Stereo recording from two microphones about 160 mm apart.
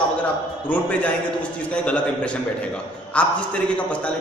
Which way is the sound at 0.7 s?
10° left (ahead or behind).